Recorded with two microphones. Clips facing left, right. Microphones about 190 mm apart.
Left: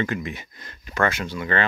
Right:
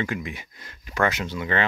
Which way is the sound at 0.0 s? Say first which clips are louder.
Left 2 dB; 10° right (ahead or behind).